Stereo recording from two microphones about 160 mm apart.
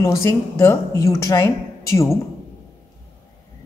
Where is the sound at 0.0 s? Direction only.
20° left (ahead or behind).